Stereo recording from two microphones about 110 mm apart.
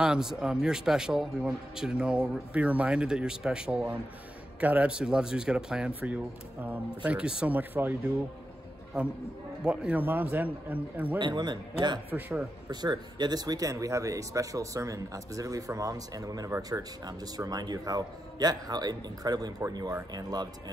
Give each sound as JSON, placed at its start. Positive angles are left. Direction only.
{"t": 0.0, "sound": "speech", "side_deg": -5}
{"t": 9.6, "sound": "speech", "side_deg": -10}
{"t": 11.1, "sound": "a man's voice", "side_deg": -45}
{"t": 12.1, "sound": "speech", "side_deg": -10}
{"t": 12.6, "sound": "speech", "side_deg": -40}